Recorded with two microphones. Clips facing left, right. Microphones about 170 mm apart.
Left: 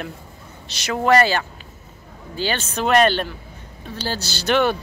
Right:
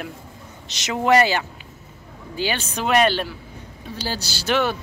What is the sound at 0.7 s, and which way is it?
Speech, 20° right (ahead or behind).